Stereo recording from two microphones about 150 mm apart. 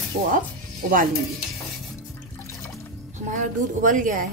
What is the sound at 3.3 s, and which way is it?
Speech, 60° right (ahead or behind).